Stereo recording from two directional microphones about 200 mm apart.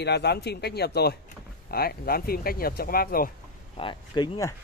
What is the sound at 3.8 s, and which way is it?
Speech, 25° left (ahead or behind).